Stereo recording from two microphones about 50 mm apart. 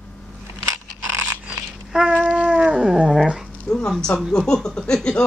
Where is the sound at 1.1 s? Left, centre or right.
Right.